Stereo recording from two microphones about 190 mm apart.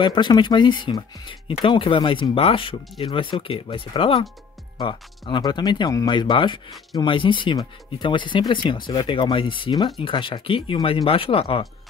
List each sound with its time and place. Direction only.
0.0 s speech: 25° left (ahead or behind)